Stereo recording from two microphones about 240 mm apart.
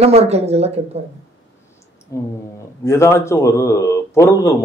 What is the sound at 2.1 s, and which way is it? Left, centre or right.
A man's voice, centre.